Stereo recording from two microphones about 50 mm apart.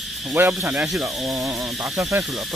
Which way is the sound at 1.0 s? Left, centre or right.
Right.